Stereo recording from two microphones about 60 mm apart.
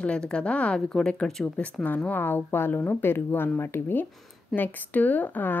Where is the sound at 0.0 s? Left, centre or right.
Centre.